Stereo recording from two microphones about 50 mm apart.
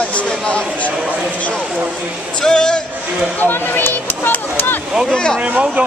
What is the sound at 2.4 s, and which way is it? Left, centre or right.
Speech, centre.